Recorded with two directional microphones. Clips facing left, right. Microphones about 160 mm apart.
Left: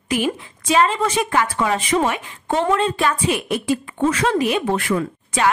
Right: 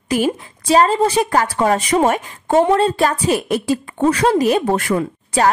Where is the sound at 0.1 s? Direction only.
40° right (ahead or behind).